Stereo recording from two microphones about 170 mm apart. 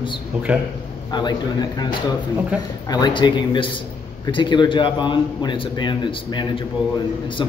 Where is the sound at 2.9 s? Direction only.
25° left (ahead or behind).